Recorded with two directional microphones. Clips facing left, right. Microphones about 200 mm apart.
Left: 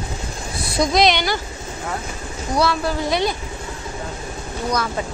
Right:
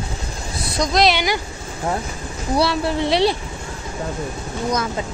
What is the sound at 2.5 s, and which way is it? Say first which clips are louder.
Speech: right 1 dB; 30° right (ahead or behind).